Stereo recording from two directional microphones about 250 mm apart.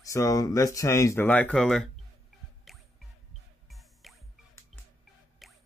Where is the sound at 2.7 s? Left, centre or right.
Centre.